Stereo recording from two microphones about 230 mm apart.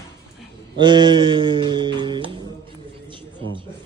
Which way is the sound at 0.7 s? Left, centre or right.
Centre.